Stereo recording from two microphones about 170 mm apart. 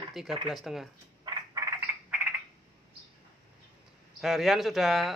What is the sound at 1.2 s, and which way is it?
Frog, 20° right (ahead or behind).